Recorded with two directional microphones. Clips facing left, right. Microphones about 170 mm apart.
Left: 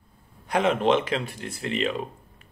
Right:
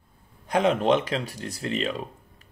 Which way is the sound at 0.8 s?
40° right (ahead or behind).